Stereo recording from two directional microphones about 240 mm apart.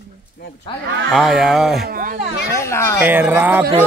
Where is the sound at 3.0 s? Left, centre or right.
Centre.